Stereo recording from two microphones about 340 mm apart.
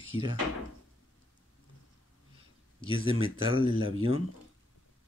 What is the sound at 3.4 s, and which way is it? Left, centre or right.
Speech, centre.